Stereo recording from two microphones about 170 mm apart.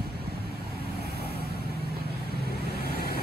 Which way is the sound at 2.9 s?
65° left (ahead or behind).